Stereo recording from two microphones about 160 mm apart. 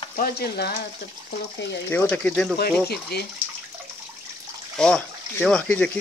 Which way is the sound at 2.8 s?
90° left.